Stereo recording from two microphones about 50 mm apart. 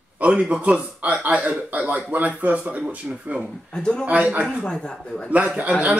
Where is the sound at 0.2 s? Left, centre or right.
Right.